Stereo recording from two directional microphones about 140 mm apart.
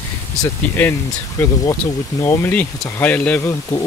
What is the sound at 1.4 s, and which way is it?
Speech, 15° left (ahead or behind).